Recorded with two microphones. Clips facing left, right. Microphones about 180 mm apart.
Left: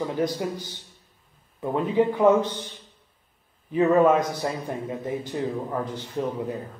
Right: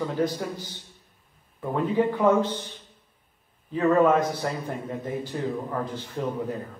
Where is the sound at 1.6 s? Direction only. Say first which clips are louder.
Left 2 dB; 15° left (ahead or behind).